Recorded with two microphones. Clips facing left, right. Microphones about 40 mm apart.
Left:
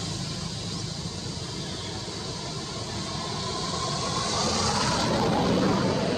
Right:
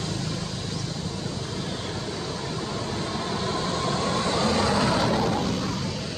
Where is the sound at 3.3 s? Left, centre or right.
Right.